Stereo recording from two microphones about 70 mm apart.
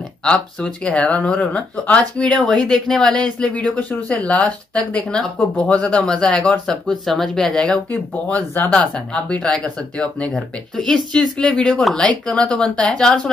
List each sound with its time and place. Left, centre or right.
0.2 s speech: centre
8.1 s speech: left